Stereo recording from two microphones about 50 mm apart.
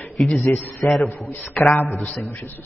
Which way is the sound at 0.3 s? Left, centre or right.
Left.